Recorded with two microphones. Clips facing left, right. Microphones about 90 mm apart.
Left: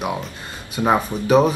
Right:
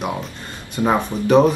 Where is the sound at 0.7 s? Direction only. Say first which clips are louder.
Even; 10° left (ahead or behind).